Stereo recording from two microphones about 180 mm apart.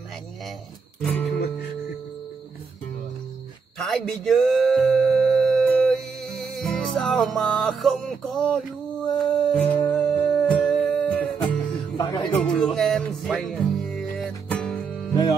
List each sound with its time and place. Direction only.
3.7 s a sound: centre (ahead or behind)
9.0 s music: 5° left (ahead or behind)
12.0 s music: 20° left (ahead or behind)
12.4 s music: centre (ahead or behind)